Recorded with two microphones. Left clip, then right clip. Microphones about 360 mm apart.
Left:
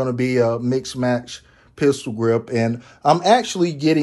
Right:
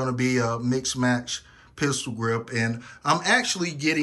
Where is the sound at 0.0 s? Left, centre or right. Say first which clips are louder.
Left 6 dB; centre.